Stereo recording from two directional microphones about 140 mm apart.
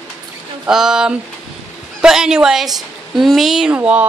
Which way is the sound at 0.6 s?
5° right (ahead or behind).